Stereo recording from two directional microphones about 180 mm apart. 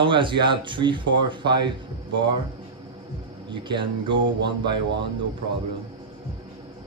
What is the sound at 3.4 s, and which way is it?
Speech, 25° right (ahead or behind).